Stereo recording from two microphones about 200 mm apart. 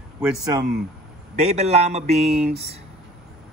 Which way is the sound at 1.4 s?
35° right (ahead or behind).